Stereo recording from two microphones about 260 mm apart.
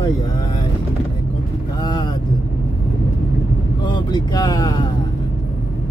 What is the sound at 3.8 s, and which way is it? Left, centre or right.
Speech, centre.